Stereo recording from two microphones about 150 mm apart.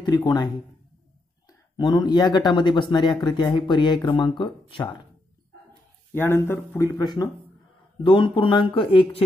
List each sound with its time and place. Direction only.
0.0 s speech: 25° left (ahead or behind)
1.8 s speech: 25° left (ahead or behind)
6.1 s speech: 15° left (ahead or behind)
8.0 s speech: 35° left (ahead or behind)